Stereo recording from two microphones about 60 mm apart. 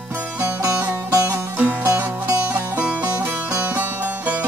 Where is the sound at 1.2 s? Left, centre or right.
Right.